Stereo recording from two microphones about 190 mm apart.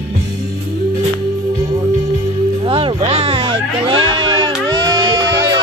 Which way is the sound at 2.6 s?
30° right (ahead or behind).